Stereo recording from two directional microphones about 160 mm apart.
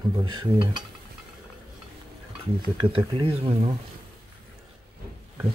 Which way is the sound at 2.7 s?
35° right (ahead or behind).